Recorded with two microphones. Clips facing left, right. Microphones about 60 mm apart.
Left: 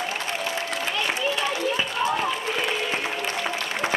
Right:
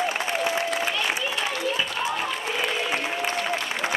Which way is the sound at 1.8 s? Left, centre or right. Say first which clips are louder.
Left 2 dB; centre.